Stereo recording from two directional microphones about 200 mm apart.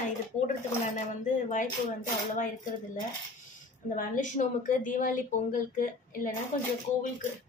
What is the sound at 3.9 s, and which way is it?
Speech, 40° left (ahead or behind).